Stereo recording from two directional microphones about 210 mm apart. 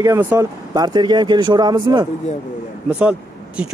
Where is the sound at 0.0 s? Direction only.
10° right (ahead or behind).